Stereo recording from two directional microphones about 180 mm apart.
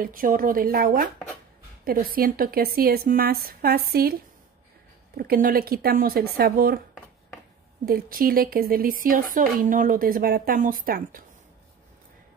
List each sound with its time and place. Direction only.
0.0 s a woman's voice: 50° right (ahead or behind)
5.1 s a woman's voice: 55° right (ahead or behind)
7.8 s speech: 55° right (ahead or behind)